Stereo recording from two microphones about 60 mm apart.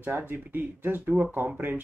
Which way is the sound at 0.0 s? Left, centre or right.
Right.